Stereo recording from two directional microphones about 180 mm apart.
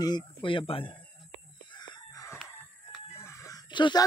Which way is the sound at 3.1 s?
15° left (ahead or behind).